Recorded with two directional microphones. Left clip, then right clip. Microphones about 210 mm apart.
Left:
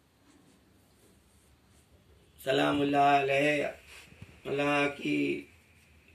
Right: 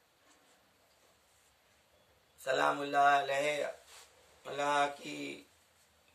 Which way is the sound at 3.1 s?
10° right (ahead or behind).